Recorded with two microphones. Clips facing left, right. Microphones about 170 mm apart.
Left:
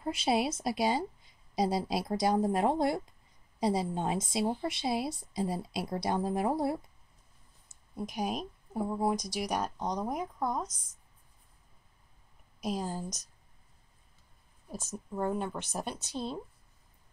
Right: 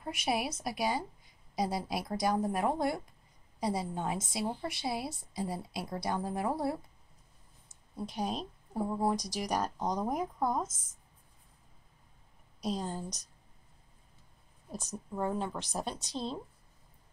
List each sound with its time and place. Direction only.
0.0 s a woman's voice: 30° left (ahead or behind)
7.9 s a woman's voice: 15° left (ahead or behind)
12.6 s a woman's voice: 5° left (ahead or behind)
14.7 s speech: 5° left (ahead or behind)